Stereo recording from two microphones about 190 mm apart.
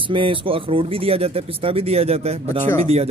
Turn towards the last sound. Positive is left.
turn(degrees=-35)  # may be behind; listen again after turning